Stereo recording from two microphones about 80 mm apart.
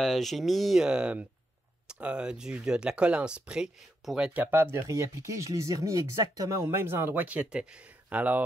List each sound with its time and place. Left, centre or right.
0.0 s speech: centre
0.8 s speech: centre
4.3 s speech: right
4.8 s speech: right
6.6 s speech: right